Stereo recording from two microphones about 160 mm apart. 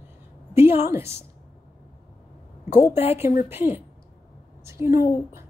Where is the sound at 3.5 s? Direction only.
15° right (ahead or behind).